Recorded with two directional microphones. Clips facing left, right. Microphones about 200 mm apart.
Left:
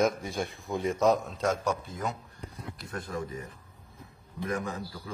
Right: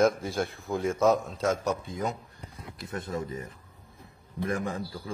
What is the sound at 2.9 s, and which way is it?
Speech, 25° right (ahead or behind).